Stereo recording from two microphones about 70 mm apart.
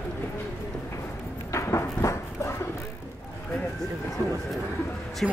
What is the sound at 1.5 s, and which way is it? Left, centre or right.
Dog, left.